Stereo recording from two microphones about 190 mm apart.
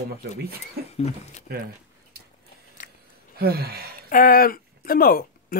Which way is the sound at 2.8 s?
40° left (ahead or behind).